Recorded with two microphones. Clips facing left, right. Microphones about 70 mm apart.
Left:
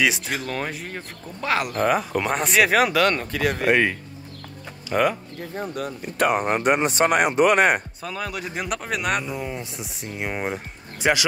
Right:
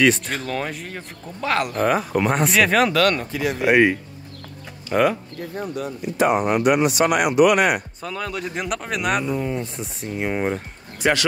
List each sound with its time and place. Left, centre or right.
0.0 s speech: centre
3.2 s speech: left
3.7 s speech: centre
5.0 s speech: centre
5.8 s speech: left
6.4 s speech: left
8.0 s speech: centre
11.0 s speech: centre